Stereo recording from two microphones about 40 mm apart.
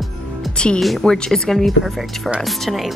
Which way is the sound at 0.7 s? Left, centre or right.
Centre.